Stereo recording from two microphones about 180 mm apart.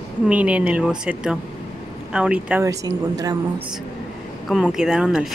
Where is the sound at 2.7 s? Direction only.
20° right (ahead or behind).